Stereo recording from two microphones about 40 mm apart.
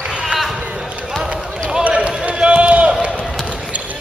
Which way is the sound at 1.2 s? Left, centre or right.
Centre.